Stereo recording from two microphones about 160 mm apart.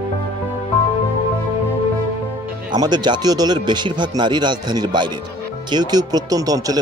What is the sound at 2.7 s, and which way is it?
Speech, 25° right (ahead or behind).